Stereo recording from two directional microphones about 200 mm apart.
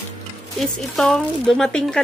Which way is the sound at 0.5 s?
Centre (ahead or behind).